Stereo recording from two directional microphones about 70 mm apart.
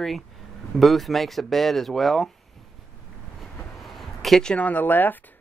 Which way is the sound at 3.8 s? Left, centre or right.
Centre.